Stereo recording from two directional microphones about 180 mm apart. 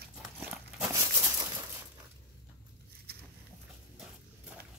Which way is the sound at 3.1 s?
60° right (ahead or behind).